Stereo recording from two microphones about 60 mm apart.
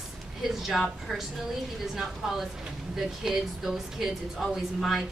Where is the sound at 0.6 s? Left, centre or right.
Centre.